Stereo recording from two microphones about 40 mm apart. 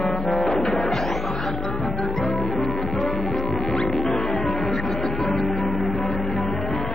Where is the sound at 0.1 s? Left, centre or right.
Centre.